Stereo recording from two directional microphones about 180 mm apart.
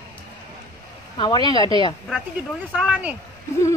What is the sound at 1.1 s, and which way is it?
Speech, 25° left (ahead or behind).